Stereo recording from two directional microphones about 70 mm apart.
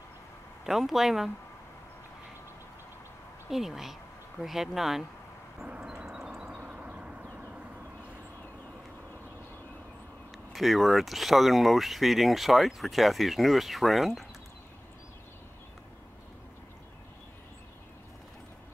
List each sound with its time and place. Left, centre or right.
0.7 s speech: centre
3.4 s speech: centre
5.7 s vehicle: centre
10.5 s speech: centre